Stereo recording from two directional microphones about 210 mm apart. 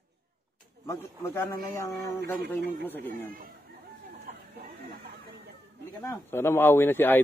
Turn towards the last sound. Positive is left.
turn(degrees=10)  # may be behind; listen again after turning